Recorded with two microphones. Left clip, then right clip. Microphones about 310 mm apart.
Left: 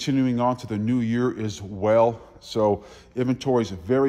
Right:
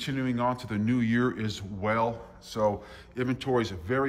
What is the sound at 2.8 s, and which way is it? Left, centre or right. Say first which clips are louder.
Speech: left 5 dB; centre.